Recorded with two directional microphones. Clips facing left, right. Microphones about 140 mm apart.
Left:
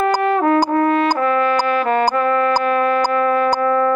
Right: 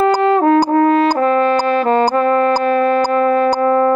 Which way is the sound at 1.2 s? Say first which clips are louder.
Right 3 dB; 30° right (ahead or behind).